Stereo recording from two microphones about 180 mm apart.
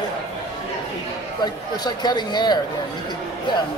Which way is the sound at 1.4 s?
25° left (ahead or behind).